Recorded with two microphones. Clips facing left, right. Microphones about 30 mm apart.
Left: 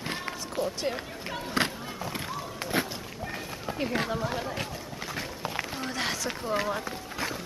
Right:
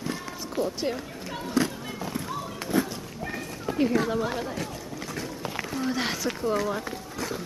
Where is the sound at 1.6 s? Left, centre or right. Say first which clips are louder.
Right 2 dB; left.